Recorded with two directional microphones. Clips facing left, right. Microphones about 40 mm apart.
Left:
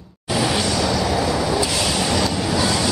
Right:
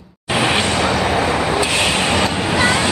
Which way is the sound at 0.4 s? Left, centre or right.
Right.